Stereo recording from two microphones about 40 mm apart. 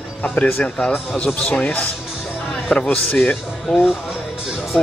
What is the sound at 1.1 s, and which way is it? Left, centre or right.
Speech, left.